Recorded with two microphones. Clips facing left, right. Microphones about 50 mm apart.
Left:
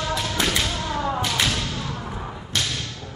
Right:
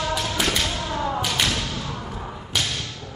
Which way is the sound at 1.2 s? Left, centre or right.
Centre.